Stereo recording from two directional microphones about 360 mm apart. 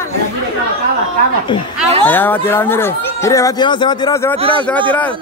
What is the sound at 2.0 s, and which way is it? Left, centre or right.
A man's voice, centre.